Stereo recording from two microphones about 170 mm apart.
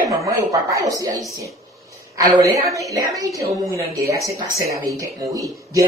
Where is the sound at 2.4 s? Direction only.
20° right (ahead or behind).